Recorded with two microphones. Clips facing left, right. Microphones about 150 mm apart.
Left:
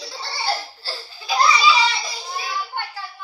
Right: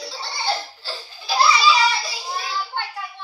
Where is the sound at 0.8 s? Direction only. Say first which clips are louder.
Even; 15° right (ahead or behind).